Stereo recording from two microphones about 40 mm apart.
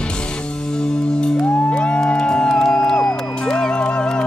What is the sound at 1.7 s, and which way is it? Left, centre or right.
Music, left.